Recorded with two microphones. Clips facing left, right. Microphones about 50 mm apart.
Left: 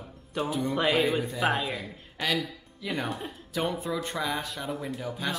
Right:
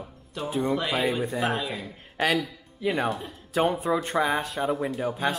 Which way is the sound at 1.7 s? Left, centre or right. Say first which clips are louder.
Right 5 dB; right.